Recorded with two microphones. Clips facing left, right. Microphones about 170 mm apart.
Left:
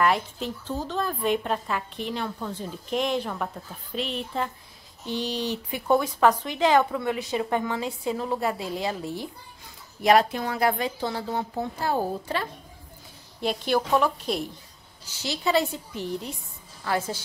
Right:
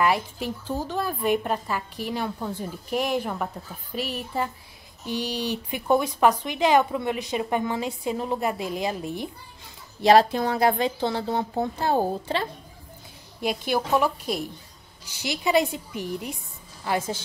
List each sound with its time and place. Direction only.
0.0 s speech: 10° right (ahead or behind)
10.0 s speech: 30° right (ahead or behind)
13.4 s speech: 10° right (ahead or behind)